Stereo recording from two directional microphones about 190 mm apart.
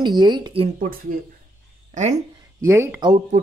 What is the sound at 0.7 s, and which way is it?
Speech, 45° right (ahead or behind).